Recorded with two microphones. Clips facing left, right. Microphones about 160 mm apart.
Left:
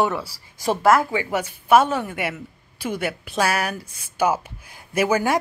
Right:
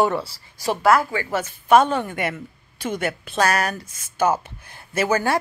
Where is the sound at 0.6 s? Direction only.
20° left (ahead or behind).